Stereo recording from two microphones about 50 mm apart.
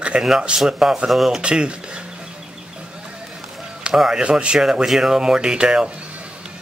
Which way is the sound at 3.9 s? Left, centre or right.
Centre.